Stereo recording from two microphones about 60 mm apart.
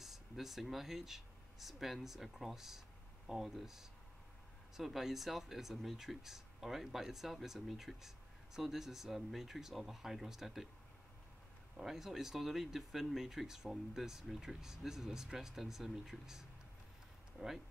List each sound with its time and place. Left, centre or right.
0.0 s speech: centre
11.7 s speech: centre